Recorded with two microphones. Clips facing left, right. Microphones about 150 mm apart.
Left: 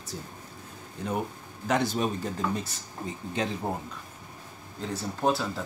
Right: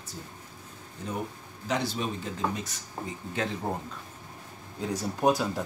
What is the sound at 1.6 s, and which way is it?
Speech, 50° left (ahead or behind).